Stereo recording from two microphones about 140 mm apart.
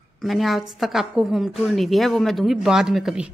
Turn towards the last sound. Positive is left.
turn(degrees=-5)  # may be behind; listen again after turning